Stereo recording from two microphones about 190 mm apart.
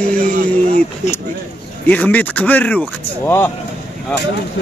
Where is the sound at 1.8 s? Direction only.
10° left (ahead or behind).